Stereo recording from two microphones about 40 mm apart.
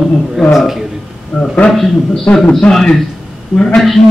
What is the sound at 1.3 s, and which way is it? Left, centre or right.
Speech, centre.